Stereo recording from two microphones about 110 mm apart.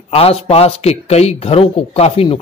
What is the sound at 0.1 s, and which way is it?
Speech, 65° left (ahead or behind).